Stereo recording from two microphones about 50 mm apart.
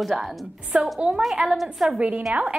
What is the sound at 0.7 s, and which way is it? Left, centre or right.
A woman's voice, centre.